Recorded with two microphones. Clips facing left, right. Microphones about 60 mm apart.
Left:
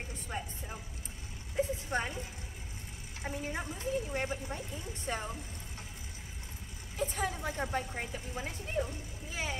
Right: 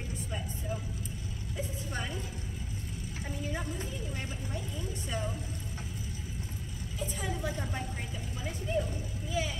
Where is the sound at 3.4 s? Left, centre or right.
Left.